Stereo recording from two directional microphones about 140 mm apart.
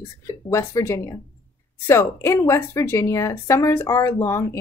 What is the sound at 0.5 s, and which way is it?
Speech, 20° left (ahead or behind).